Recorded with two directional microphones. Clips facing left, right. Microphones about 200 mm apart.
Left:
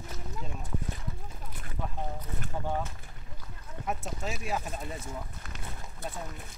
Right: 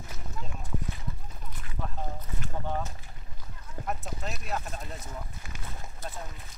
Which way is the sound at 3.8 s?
5° left (ahead or behind).